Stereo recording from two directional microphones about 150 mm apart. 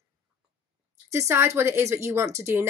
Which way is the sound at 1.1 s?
20° right (ahead or behind).